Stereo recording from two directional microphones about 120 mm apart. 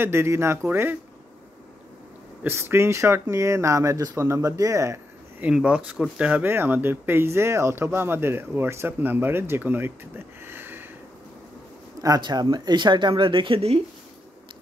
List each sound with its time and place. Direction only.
0.0 s speech: 20° right (ahead or behind)
2.4 s speech: 20° right (ahead or behind)
5.4 s speech: 10° right (ahead or behind)
12.0 s speech: 35° right (ahead or behind); by 13.7 s 50° right (ahead or behind)